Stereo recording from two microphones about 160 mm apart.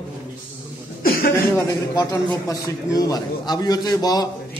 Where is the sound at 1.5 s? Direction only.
20° left (ahead or behind).